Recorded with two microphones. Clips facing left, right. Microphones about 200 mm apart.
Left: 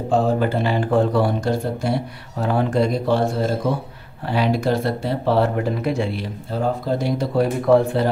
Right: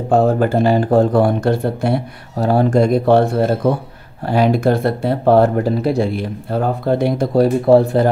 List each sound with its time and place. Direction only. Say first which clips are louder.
0.1 s speech: right 5 dB; 45° right (ahead or behind)
2.3 s speech: right 6 dB; 40° right (ahead or behind)
6.1 s speech: right 5 dB; 60° right (ahead or behind)
7.3 s speech: right 5 dB; 35° right (ahead or behind)